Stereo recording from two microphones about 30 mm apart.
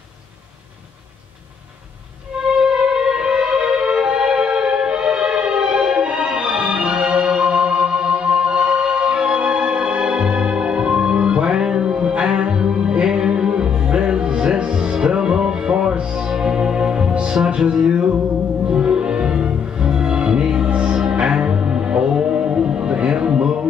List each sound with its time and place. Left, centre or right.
2.4 s music: right
20.9 s music: right